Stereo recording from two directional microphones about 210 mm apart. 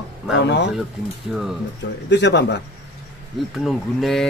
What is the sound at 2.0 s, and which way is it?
Speech, 55° left (ahead or behind).